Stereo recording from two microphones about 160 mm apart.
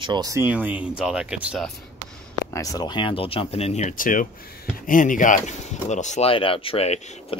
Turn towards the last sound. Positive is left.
turn(degrees=35)  # may be behind; listen again after turning